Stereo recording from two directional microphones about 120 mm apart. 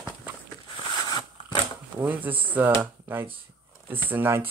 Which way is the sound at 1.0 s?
40° left (ahead or behind).